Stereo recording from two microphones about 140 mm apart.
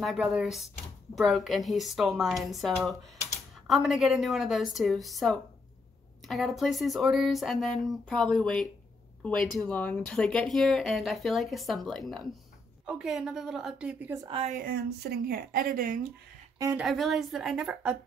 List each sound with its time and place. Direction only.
0.0 s speech: centre (ahead or behind)
15.2 s speech: 90° right
16.7 s speech: centre (ahead or behind)